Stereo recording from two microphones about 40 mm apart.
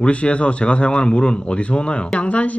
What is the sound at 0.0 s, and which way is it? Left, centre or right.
A man's voice, left.